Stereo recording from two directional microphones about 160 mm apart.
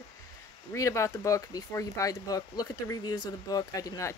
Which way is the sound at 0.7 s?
20° left (ahead or behind).